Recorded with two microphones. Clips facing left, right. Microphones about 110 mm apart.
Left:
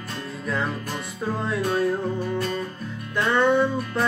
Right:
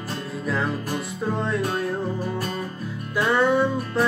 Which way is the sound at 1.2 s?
Centre (ahead or behind).